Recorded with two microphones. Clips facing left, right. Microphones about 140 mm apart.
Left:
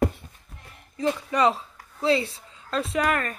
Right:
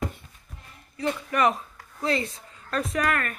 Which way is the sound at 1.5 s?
30° left (ahead or behind).